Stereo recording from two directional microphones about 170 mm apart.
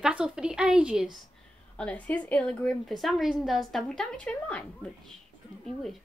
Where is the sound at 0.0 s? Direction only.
5° right (ahead or behind).